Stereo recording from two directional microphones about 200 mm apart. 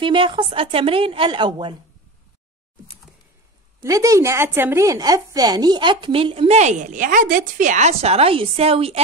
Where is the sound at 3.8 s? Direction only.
15° right (ahead or behind).